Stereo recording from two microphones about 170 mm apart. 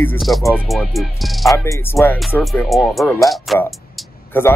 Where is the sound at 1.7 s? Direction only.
15° left (ahead or behind).